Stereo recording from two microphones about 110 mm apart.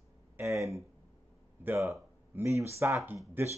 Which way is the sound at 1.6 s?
20° right (ahead or behind).